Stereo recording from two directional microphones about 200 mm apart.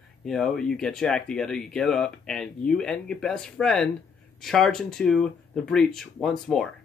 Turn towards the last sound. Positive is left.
turn(degrees=0)  # may be behind; listen again after turning